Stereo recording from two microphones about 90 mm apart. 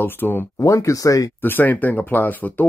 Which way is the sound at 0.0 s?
25° left (ahead or behind).